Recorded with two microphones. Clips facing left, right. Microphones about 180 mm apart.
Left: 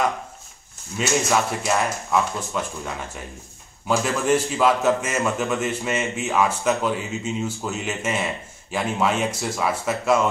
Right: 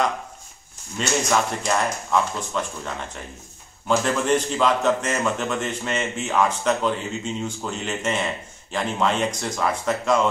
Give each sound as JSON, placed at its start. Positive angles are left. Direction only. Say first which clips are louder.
{"t": 0.9, "sound": "a man's voice", "louder": "left 1 dB", "side_deg": 5}